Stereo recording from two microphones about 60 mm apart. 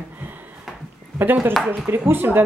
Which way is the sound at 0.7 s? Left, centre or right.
Centre.